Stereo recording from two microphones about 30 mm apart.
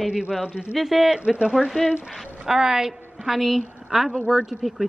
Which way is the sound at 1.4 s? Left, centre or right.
Right.